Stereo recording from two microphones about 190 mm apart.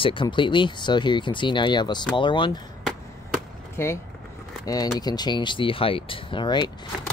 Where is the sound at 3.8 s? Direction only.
15° left (ahead or behind).